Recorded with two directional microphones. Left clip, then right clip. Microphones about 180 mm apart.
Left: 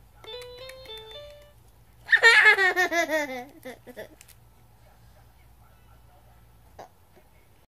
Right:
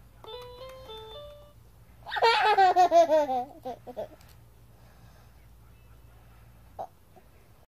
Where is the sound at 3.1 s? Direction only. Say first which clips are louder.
Right 4 dB; 70° left (ahead or behind).